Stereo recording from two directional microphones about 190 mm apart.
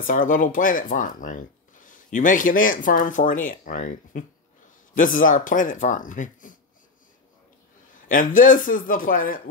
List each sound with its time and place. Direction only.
0.0 s speech: 45° left (ahead or behind)
8.1 s speech: 45° left (ahead or behind)